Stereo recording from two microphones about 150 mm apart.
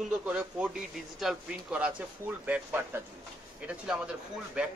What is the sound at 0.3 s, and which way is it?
A man's voice, 10° right (ahead or behind).